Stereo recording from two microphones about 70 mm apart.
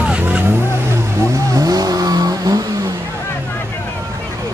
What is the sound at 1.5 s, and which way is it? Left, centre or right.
Vehicle, right.